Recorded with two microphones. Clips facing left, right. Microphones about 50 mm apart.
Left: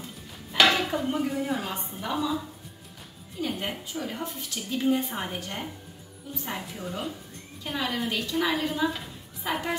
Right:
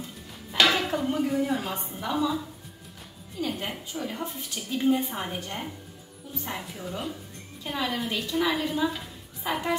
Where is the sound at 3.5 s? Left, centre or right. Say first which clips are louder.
Left 1 dB; centre.